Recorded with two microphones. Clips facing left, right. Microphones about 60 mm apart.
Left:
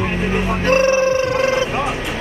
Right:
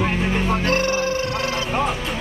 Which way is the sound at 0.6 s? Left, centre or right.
Left.